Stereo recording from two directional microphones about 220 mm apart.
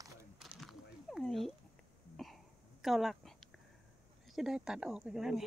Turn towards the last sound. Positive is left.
turn(degrees=0)  # may be behind; listen again after turning